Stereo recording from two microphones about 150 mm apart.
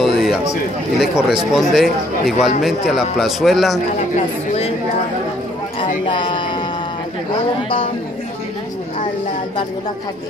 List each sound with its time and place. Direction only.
0.0 s a sound: centre (ahead or behind)
0.9 s speech: 5° right (ahead or behind)
6.0 s music: 30° left (ahead or behind)